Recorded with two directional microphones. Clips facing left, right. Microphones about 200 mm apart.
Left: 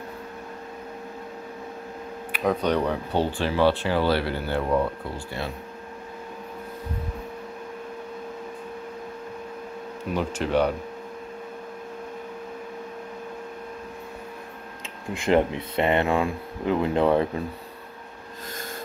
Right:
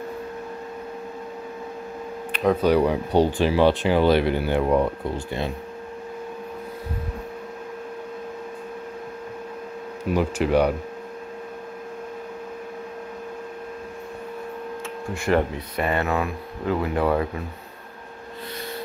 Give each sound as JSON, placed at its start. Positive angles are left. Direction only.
{"t": 2.3, "sound": "speech", "side_deg": 0}
{"t": 10.1, "sound": "speech", "side_deg": -10}
{"t": 15.1, "sound": "speech", "side_deg": 20}